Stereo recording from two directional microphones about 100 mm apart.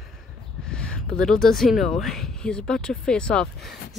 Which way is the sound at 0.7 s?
10° left (ahead or behind).